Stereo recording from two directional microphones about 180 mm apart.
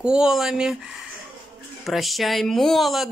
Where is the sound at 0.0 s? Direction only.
5° right (ahead or behind).